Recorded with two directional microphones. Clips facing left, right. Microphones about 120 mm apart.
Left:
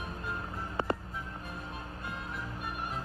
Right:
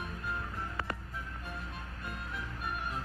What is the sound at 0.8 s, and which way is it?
Music, 25° left (ahead or behind).